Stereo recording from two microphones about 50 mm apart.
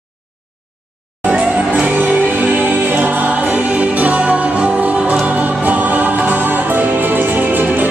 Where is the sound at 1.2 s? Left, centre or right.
Right.